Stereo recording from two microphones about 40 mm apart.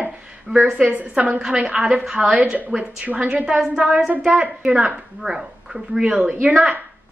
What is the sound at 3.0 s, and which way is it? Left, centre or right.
Speech, right.